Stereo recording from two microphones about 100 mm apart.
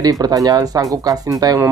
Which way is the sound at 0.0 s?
40° right (ahead or behind).